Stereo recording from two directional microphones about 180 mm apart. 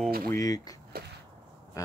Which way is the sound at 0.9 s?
55° right (ahead or behind).